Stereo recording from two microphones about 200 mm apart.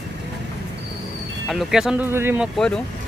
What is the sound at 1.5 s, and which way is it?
Speech, 5° right (ahead or behind).